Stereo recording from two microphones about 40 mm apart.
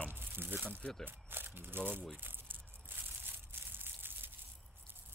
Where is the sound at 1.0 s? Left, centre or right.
Right.